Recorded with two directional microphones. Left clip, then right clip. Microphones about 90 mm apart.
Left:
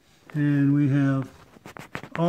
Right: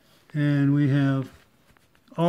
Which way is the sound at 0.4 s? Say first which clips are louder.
Left 1 dB; 25° right (ahead or behind).